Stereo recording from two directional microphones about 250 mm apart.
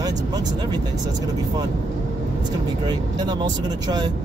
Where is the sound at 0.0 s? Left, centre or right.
Centre.